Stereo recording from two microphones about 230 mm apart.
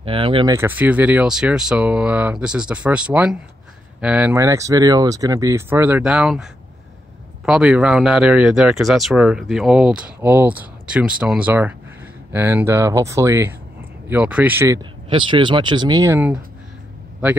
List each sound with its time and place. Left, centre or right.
0.0 s speech: right
0.6 s speech: centre